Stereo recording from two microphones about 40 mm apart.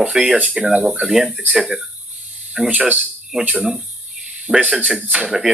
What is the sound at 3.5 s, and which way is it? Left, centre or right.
Speech, right.